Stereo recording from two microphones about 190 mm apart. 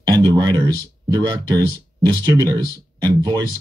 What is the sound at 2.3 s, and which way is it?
Speech, 20° right (ahead or behind).